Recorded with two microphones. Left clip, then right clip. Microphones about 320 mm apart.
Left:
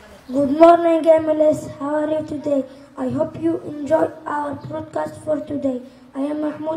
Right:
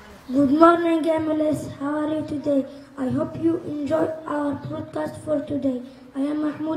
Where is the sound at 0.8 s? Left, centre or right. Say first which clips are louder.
Left 7 dB; centre.